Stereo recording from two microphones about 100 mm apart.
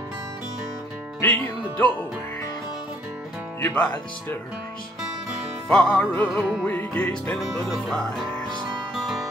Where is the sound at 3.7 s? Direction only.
15° left (ahead or behind).